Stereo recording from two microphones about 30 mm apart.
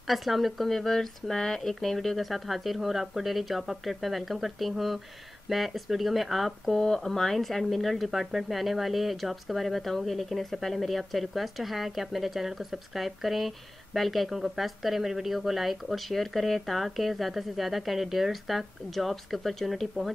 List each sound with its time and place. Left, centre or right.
0.0 s a woman's voice: centre
6.7 s a woman's voice: left; by 20.1 s centre